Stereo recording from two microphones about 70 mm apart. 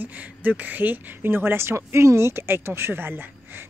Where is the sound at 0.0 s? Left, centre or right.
Right.